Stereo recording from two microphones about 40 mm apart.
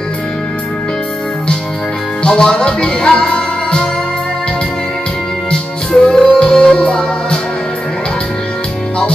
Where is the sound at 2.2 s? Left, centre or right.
Left.